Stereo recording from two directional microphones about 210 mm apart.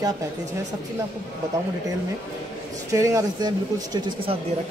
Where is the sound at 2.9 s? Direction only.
15° right (ahead or behind).